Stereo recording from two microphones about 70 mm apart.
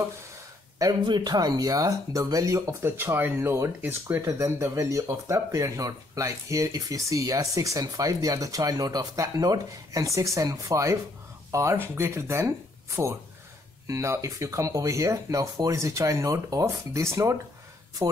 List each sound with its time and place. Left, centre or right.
0.7 s speech: right
2.8 s speech: right
4.2 s speech: right
11.5 s speech: right
13.8 s speech: right